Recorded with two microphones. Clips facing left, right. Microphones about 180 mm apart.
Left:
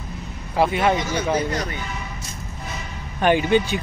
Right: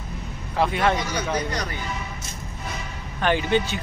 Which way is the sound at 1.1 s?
25° left (ahead or behind).